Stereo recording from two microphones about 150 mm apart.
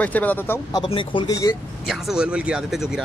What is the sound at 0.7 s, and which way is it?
Speech, 30° left (ahead or behind).